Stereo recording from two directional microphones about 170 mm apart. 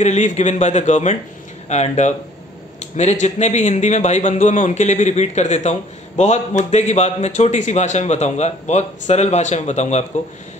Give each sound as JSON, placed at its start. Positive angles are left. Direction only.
{"t": 0.0, "sound": "a man's voice", "side_deg": 45}